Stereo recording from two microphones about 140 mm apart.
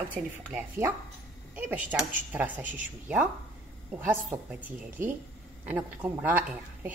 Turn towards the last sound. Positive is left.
turn(degrees=-10)  # may be behind; listen again after turning